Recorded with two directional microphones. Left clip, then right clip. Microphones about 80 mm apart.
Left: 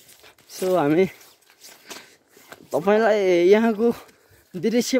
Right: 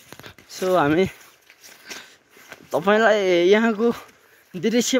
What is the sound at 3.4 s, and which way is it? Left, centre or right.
Speech, left.